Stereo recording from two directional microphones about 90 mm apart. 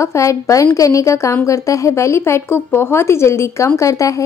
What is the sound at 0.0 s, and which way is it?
A woman's voice, 35° left (ahead or behind).